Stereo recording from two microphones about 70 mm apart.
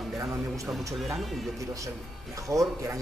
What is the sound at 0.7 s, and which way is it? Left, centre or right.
Speech, centre.